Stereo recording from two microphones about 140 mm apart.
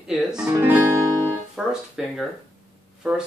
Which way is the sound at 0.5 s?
15° right (ahead or behind).